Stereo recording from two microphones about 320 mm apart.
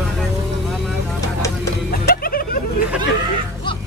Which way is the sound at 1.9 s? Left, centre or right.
Left.